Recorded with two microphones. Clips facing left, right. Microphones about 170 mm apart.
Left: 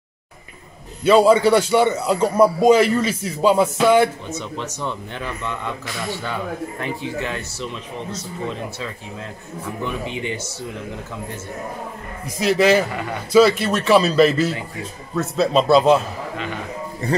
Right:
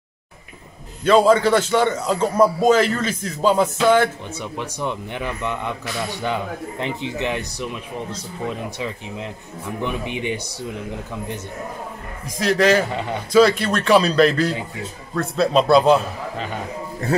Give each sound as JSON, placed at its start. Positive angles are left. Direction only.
{"t": 1.0, "sound": "a man's voice", "side_deg": 10}
{"t": 4.3, "sound": "speech", "side_deg": -10}
{"t": 12.4, "sound": "a man's voice", "side_deg": 5}